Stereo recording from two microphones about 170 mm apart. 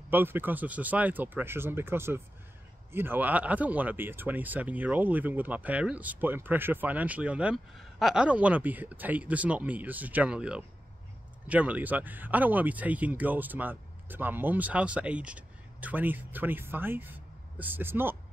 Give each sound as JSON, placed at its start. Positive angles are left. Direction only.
{"t": 0.1, "sound": "speech", "side_deg": -10}